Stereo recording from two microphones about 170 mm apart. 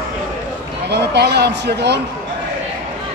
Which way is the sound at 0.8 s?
75° right (ahead or behind).